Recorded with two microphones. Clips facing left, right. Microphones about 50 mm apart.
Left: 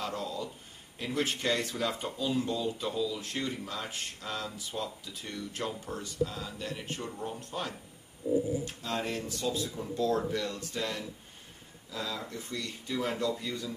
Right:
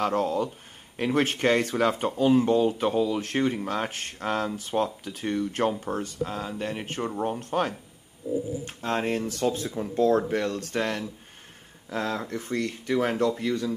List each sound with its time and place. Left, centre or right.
0.0 s speech: right
9.3 s speech: right
13.4 s speech: right